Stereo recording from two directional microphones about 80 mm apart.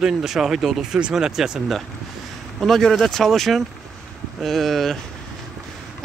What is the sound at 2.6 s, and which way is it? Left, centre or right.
Speech, centre.